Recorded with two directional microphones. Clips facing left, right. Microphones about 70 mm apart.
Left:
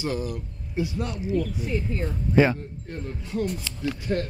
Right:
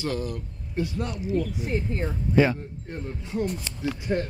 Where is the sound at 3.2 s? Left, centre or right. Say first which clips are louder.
Even; right.